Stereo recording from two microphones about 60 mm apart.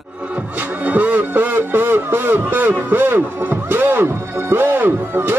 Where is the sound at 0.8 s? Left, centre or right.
Right.